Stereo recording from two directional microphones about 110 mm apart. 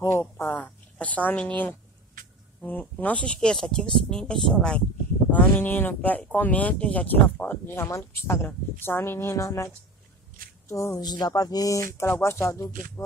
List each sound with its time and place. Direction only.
0.0 s a sound: 25° left (ahead or behind)
2.6 s speech: 15° left (ahead or behind)
5.3 s speech: 15° left (ahead or behind)
10.7 s speech: 25° left (ahead or behind)